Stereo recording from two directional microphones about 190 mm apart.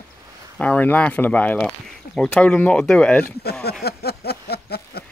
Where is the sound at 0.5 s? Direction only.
10° left (ahead or behind).